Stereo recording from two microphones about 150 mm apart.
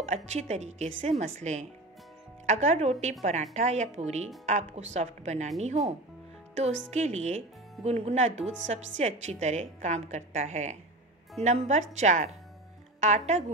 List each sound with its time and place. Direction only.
0.1 s a woman's voice: 50° right (ahead or behind)
6.5 s a woman's voice: 50° right (ahead or behind)